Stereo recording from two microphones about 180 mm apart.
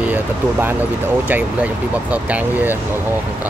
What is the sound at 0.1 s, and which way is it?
Speech, 10° right (ahead or behind).